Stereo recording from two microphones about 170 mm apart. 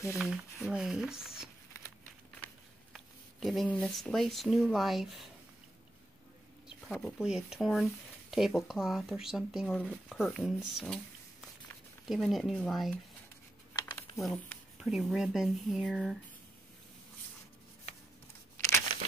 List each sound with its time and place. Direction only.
0.2 s speech: centre (ahead or behind)
2.9 s speech: centre (ahead or behind)
6.9 s speech: centre (ahead or behind)
12.1 s speech: centre (ahead or behind)
13.7 s a sound: 25° left (ahead or behind)
14.1 s speech: 5° left (ahead or behind)